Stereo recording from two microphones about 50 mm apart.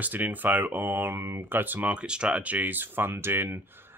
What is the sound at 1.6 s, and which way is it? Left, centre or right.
Speech, right.